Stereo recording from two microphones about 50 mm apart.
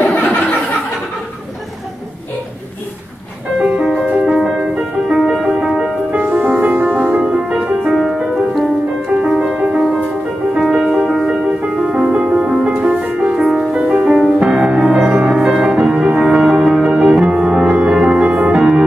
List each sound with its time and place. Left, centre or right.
0.0 s a sound: left
3.5 s music: centre
6.1 s music: right
9.3 s music: centre
10.6 s music: centre; by 13.5 s right
13.5 s music: centre
13.7 s music: right
18.6 s music: centre